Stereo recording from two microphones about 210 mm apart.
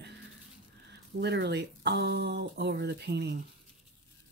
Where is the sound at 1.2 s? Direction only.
50° right (ahead or behind).